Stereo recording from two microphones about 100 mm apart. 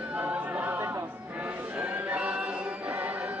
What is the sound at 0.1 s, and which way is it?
Choir, 15° right (ahead or behind).